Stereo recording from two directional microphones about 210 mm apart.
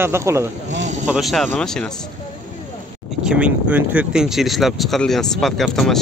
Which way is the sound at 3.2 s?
5° right (ahead or behind).